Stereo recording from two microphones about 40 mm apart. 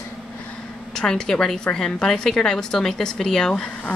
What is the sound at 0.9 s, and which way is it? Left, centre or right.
A woman's voice, centre.